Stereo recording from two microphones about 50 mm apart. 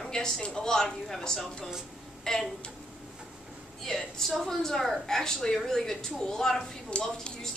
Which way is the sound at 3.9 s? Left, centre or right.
Centre.